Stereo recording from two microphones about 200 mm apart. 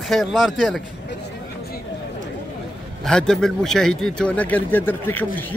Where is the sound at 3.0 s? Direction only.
5° left (ahead or behind).